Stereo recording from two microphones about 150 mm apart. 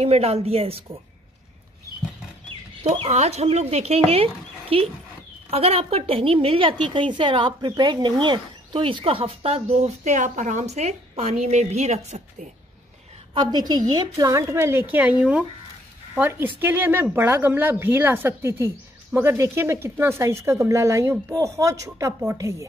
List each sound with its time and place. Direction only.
0.0 s a woman's voice: 45° right (ahead or behind)
2.8 s a woman's voice: 45° right (ahead or behind)
13.3 s speech: 30° right (ahead or behind)